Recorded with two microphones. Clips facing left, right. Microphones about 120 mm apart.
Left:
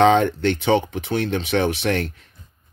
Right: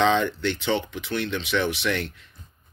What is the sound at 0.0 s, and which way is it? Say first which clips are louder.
Speech: left 6 dB; 55° left (ahead or behind).